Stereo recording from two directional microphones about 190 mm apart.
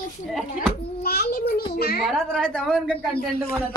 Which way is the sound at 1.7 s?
55° left (ahead or behind).